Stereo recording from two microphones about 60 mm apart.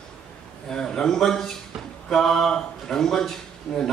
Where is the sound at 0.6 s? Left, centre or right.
Centre.